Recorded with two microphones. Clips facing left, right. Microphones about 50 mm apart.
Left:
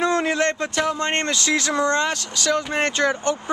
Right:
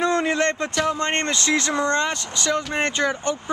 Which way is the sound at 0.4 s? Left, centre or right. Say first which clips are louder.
Even; right.